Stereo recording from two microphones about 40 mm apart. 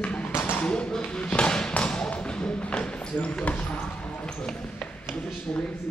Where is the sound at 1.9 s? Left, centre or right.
Left.